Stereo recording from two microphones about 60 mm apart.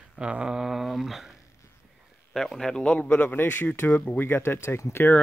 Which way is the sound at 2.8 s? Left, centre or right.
Left.